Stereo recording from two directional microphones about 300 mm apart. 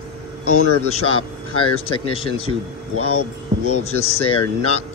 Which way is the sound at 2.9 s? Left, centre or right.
Left.